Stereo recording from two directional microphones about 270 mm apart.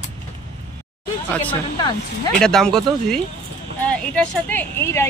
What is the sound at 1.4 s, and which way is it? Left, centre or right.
Speech, centre.